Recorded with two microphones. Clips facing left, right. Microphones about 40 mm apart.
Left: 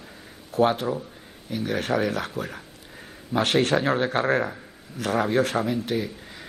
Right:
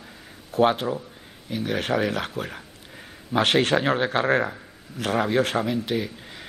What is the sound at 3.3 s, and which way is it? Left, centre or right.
Speech, right.